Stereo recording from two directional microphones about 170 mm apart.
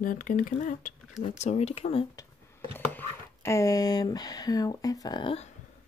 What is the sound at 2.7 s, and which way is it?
Speech, 10° left (ahead or behind).